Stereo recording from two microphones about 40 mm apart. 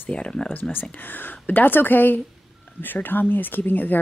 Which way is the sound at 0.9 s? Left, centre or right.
Left.